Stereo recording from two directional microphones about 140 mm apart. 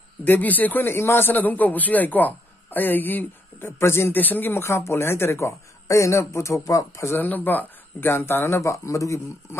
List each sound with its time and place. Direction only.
0.2 s a man's voice: 10° left (ahead or behind)